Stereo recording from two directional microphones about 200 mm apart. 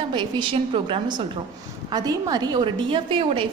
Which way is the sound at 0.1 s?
25° right (ahead or behind).